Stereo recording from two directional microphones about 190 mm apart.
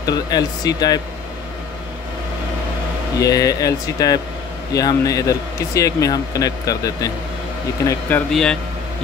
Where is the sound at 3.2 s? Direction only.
20° left (ahead or behind).